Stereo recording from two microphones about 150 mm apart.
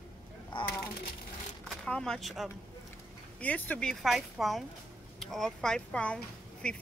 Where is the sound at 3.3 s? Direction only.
10° left (ahead or behind).